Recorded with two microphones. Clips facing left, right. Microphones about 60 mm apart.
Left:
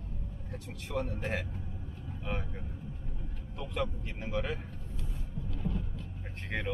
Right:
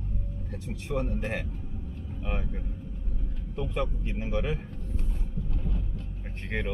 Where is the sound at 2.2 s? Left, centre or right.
Centre.